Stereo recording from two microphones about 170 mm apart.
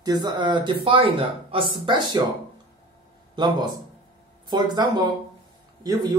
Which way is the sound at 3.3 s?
25° right (ahead or behind).